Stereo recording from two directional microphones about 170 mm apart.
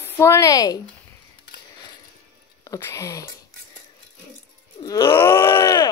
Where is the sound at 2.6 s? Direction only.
20° left (ahead or behind).